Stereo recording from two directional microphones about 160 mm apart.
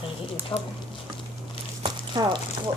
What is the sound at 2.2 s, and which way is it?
Speech, 25° right (ahead or behind).